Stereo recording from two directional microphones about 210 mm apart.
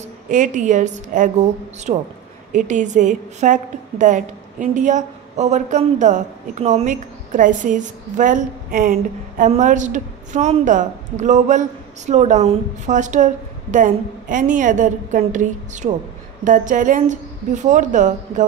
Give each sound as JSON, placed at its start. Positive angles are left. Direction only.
{"t": 0.3, "sound": "a woman's voice", "side_deg": -35}